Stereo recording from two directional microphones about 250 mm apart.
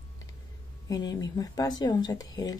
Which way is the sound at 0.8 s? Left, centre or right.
Centre.